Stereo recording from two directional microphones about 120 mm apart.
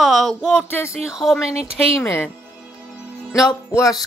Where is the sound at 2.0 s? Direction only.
20° left (ahead or behind).